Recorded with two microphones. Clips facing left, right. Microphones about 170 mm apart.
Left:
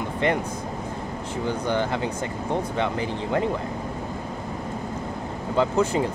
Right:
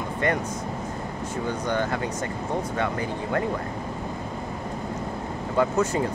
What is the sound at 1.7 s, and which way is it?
Speech, 20° left (ahead or behind).